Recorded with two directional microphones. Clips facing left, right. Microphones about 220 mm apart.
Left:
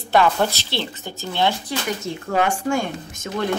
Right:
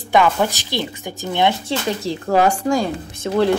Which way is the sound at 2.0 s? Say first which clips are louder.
Right 6 dB; 35° right (ahead or behind).